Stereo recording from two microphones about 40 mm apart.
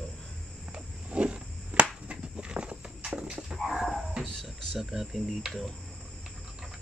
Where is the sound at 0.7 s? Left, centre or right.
Right.